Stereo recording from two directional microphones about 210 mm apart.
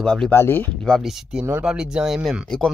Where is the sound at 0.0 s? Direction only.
5° left (ahead or behind).